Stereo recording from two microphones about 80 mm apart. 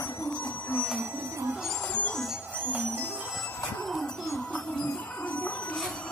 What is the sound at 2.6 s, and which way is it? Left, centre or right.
Music, right.